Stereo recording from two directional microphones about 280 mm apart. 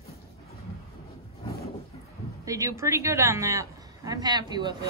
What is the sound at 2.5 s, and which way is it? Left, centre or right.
A woman's voice, centre.